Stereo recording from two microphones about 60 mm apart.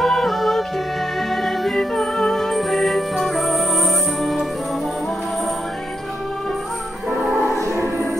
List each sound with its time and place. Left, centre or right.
0.0 s music: centre
7.4 s music: right